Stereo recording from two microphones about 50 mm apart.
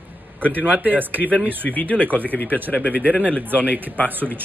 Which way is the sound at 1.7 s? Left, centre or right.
Left.